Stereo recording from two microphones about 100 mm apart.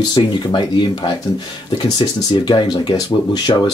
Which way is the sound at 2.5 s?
45° left (ahead or behind).